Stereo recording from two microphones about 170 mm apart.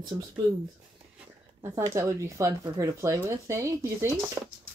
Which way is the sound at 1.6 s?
20° right (ahead or behind).